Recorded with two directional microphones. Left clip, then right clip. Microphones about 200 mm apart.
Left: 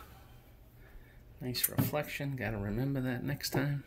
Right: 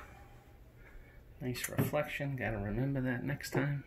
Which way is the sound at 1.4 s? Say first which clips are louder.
Left 1 dB; 10° left (ahead or behind).